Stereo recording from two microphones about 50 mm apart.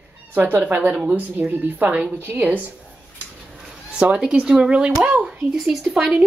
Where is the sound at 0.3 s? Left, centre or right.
Right.